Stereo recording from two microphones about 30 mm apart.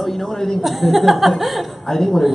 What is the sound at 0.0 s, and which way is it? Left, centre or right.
Speech, centre.